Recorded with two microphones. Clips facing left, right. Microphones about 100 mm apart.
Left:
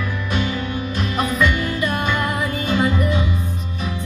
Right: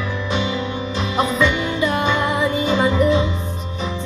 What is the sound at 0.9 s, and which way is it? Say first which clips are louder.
Music: right 2 dB; 25° right (ahead or behind).